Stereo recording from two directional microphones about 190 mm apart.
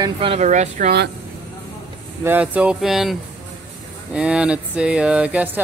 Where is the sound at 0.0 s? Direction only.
30° right (ahead or behind).